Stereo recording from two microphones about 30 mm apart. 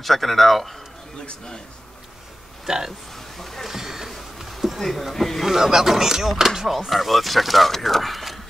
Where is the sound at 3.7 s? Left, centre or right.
Centre.